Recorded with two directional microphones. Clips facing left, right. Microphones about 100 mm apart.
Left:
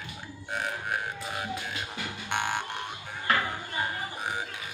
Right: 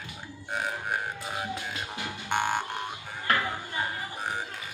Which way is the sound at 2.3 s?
Centre (ahead or behind).